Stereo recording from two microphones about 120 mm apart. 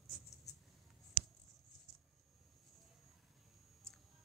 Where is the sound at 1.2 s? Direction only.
Centre (ahead or behind).